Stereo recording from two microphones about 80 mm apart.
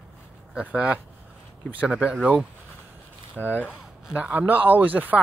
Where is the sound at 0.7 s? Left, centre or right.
Centre.